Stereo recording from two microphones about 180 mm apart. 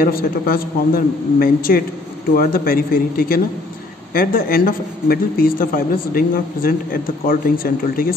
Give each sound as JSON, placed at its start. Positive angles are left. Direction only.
{"t": 0.0, "sound": "speech", "side_deg": 55}